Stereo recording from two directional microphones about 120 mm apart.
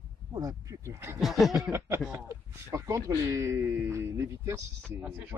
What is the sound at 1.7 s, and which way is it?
Speech, 20° right (ahead or behind).